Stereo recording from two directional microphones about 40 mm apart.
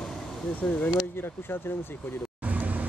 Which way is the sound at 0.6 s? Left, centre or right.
Left.